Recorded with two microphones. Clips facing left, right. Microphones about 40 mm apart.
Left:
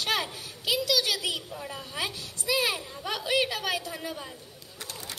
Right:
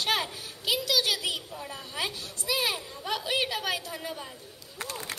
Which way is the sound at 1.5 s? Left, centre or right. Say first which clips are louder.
Left 1 dB; centre.